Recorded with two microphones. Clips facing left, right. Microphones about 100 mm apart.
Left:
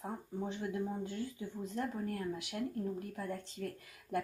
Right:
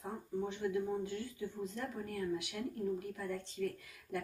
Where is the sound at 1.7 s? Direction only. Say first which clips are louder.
Left 4 dB; 40° left (ahead or behind).